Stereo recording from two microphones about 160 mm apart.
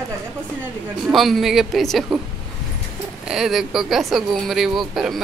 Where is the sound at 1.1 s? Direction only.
Centre (ahead or behind).